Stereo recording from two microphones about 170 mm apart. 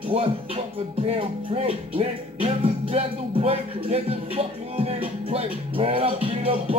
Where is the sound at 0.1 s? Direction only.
35° right (ahead or behind).